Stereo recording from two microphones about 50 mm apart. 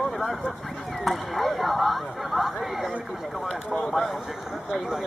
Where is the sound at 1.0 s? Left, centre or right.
Centre.